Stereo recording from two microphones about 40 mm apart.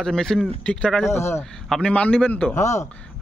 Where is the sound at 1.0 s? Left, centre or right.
Left.